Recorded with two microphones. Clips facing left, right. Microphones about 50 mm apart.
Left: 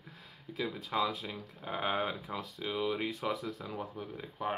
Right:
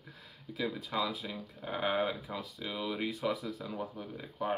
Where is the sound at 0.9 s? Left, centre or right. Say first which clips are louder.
Left 5 dB; centre.